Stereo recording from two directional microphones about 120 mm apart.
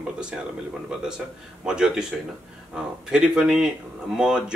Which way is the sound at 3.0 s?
5° right (ahead or behind).